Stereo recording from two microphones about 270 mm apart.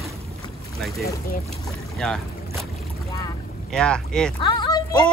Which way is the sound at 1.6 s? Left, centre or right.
Centre.